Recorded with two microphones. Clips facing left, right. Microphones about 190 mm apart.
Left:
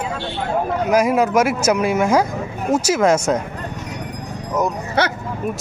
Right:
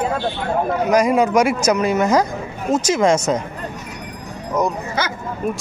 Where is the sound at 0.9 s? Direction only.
5° left (ahead or behind).